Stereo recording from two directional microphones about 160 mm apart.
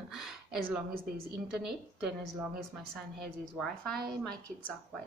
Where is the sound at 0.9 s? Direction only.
65° right (ahead or behind).